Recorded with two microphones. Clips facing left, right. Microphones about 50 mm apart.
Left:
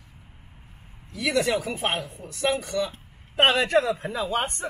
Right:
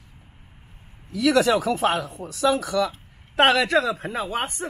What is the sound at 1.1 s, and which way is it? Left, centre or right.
A man's voice, right.